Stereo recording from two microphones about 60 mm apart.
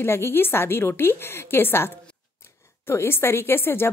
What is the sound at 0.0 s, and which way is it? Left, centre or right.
A woman's voice, left.